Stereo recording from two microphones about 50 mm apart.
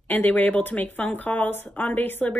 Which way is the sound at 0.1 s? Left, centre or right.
Left.